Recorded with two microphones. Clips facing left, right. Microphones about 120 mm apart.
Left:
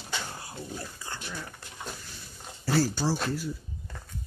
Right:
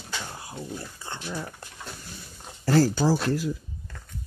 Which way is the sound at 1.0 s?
25° right (ahead or behind).